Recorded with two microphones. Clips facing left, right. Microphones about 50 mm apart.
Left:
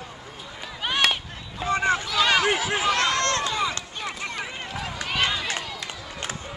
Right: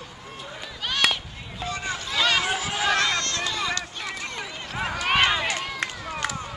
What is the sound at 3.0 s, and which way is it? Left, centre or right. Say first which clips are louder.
Run: left 2 dB; left.